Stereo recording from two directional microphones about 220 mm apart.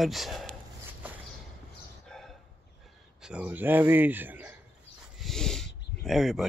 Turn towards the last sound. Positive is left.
turn(degrees=0)  # may be behind; listen again after turning